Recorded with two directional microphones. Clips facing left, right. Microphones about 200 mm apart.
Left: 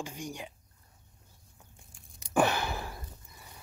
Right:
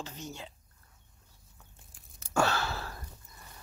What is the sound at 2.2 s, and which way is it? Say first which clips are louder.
Sniff: left 2 dB; 15° left (ahead or behind).